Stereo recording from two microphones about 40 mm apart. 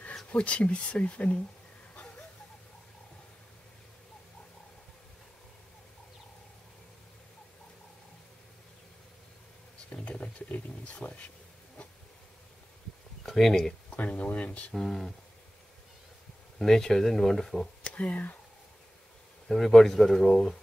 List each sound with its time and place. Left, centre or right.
0.3 s speech: left
9.8 s a sound: left
13.2 s speech: centre
13.9 s speech: left
14.7 s speech: centre
16.5 s speech: centre
17.8 s speech: left
19.4 s speech: centre